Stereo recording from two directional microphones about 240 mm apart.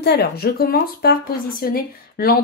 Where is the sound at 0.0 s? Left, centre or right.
Left.